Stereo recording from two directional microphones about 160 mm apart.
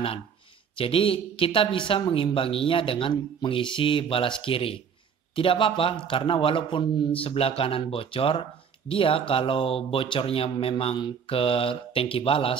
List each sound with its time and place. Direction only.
0.7 s speech: 35° left (ahead or behind)